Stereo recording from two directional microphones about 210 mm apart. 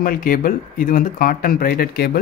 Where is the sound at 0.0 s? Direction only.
45° left (ahead or behind).